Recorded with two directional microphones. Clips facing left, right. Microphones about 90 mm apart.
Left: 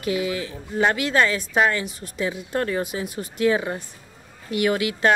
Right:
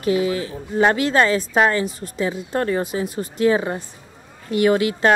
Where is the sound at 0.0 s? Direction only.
35° right (ahead or behind).